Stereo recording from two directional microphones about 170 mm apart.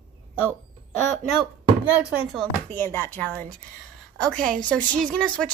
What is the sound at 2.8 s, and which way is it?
Speech, 10° left (ahead or behind).